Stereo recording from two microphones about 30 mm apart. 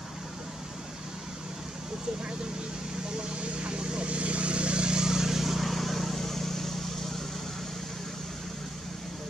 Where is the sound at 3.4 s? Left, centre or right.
Right; by 6.7 s centre.